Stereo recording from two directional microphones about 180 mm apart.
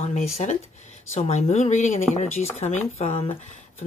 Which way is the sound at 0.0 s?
40° left (ahead or behind).